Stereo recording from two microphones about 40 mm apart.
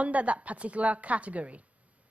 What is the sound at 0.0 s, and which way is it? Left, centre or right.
A man's voice, right.